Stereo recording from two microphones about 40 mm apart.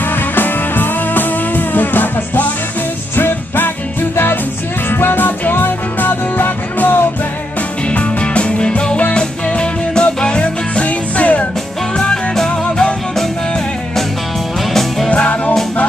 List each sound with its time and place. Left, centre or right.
0.4 s music: left
4.8 s music: left
7.9 s music: left
12.0 s music: centre
14.7 s music: centre
15.0 s music: left